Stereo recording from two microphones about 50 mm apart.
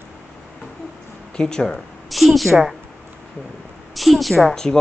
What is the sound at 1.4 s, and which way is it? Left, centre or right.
Speech, centre.